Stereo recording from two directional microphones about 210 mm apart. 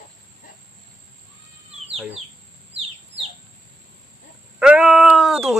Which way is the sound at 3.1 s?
55° right (ahead or behind).